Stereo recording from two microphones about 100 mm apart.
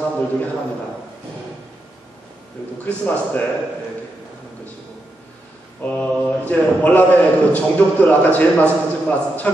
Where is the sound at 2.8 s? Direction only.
15° left (ahead or behind).